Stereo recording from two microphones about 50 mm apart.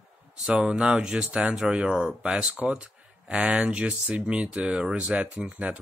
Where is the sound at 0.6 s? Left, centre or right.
Centre.